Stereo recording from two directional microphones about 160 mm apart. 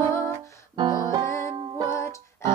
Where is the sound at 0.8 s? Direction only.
25° right (ahead or behind).